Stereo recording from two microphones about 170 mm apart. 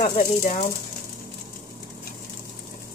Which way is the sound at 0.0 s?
45° left (ahead or behind).